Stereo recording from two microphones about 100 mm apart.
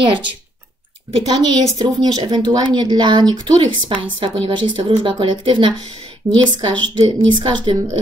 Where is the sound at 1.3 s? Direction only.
45° right (ahead or behind).